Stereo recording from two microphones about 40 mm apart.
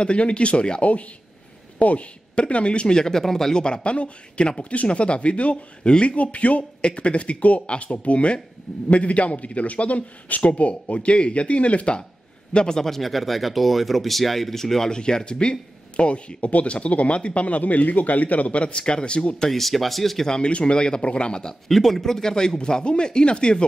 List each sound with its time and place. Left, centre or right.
0.0 s speech: left
3.0 s speech: centre
3.6 s speech: left
12.5 s speech: centre
12.8 s speech: centre; by 19.3 s left
19.3 s speech: centre
20.2 s speech: left
21.6 s speech: centre; by 23.6 s left